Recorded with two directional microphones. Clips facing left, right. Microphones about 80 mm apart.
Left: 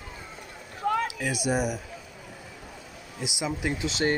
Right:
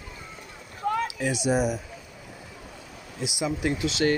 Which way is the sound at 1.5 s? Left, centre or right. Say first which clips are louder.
Right 3 dB; centre.